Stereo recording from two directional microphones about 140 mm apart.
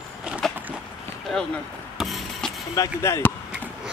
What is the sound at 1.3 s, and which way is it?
Speech, 5° left (ahead or behind).